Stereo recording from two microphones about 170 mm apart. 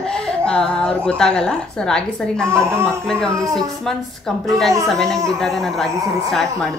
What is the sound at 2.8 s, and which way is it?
Speech, 5° left (ahead or behind).